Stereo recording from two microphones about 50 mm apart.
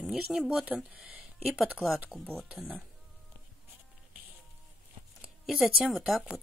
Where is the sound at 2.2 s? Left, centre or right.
Centre.